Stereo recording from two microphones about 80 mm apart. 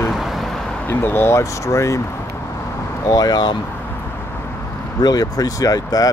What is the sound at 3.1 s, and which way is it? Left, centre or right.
Speech, left.